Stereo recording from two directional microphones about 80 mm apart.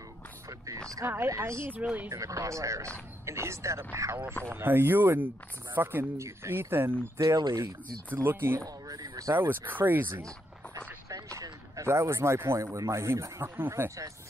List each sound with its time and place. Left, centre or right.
1.0 s speech: right
7.2 s speech: right
8.1 s speech: right
8.6 s a sound: right
9.3 s speech: right
11.8 s speech: right